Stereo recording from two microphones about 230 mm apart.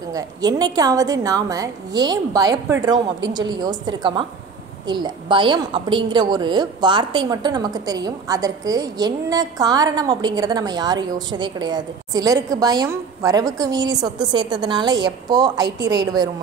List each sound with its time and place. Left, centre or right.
0.1 s a woman's voice: centre